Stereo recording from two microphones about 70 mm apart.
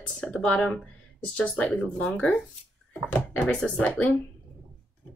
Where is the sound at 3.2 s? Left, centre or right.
Left.